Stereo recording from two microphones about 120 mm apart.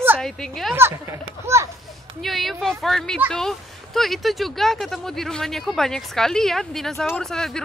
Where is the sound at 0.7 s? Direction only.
20° right (ahead or behind).